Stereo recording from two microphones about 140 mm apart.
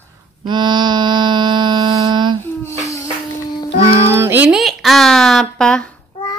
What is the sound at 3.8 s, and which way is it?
Speech, 20° right (ahead or behind).